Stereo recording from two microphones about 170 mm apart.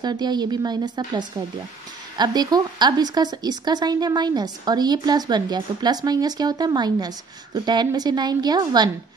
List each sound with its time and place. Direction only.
0.0 s speech: 25° right (ahead or behind)